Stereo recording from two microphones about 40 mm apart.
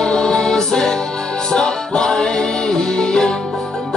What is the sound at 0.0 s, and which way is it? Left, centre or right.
Music, centre.